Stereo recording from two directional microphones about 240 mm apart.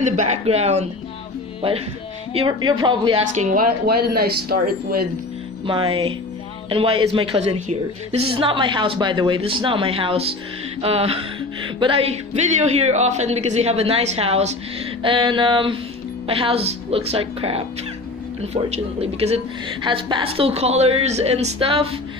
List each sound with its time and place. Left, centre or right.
0.0 s a woman's voice: right
2.3 s a woman's voice: centre; by 5.0 s right
5.7 s a woman's voice: right